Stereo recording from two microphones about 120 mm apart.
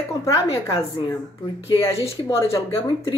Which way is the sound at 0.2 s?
30° left (ahead or behind).